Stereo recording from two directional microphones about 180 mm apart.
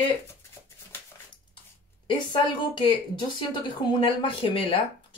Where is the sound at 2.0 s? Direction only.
25° left (ahead or behind).